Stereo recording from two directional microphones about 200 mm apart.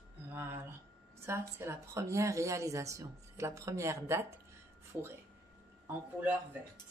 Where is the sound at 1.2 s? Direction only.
15° right (ahead or behind).